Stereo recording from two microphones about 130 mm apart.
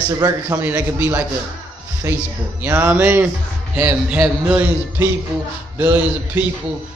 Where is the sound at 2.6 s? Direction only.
15° right (ahead or behind).